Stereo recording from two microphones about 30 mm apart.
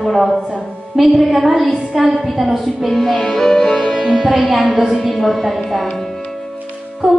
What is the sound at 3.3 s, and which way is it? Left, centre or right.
Music, centre.